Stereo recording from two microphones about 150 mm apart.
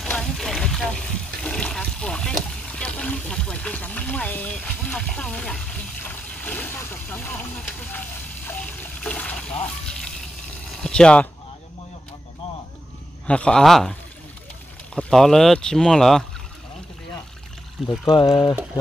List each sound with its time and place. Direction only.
0.1 s a sound: 5° left (ahead or behind)
8.5 s water: 10° left (ahead or behind)
10.8 s speech: 5° left (ahead or behind)
13.3 s speech: 5° left (ahead or behind)
15.0 s speech: 5° left (ahead or behind)
17.8 s speech: 25° left (ahead or behind)